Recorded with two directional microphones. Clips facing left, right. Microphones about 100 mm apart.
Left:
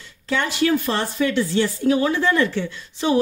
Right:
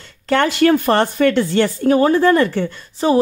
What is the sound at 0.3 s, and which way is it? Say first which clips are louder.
A woman's voice: right 6 dB; 60° right (ahead or behind).